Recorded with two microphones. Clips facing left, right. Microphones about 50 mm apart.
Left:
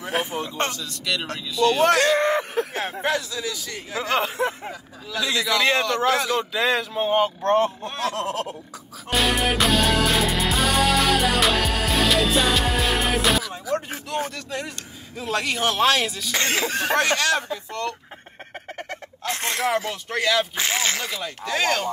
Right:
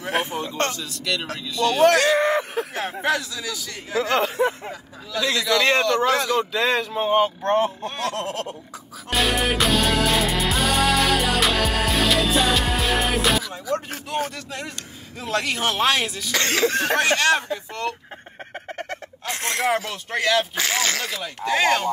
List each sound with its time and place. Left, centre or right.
0.0 s speech: centre
0.6 s throat clearing: centre
1.0 s speech: centre
3.9 s speech: centre
9.1 s music: centre
14.3 s speech: centre
16.4 s throat clearing: centre
16.8 s speech: centre
18.7 s fowl: centre
20.1 s speech: centre
20.5 s speech: left
21.5 s speech: centre